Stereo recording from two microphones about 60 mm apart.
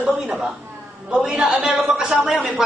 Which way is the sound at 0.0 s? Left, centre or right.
Centre.